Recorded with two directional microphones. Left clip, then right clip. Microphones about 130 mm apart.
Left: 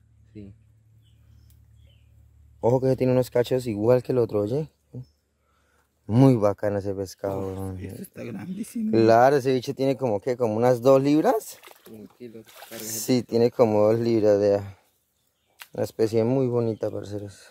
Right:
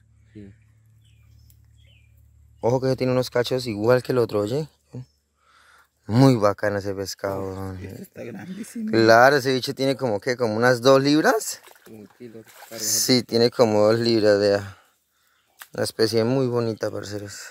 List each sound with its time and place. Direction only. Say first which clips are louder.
2.6 s speech: even; 30° left (ahead or behind)
3.7 s speech: right 2 dB; 5° left (ahead or behind)
8.0 s speech: right 1 dB; 90° left
8.9 s speech: right 3 dB; centre (ahead or behind)
12.2 s speech: even; 35° right (ahead or behind)
12.8 s speech: right 5 dB; centre (ahead or behind)